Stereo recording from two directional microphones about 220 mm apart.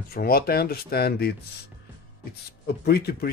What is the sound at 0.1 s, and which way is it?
Speech, 45° left (ahead or behind).